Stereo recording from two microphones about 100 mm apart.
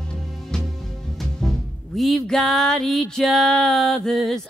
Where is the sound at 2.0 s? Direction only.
Centre (ahead or behind).